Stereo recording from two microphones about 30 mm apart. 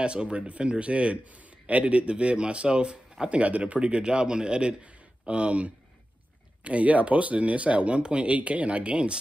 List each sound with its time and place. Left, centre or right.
0.0 s a man's voice: right
3.3 s speech: right
3.8 s a man's voice: right